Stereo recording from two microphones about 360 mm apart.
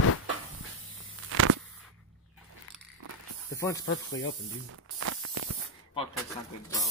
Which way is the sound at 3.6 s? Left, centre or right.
Centre.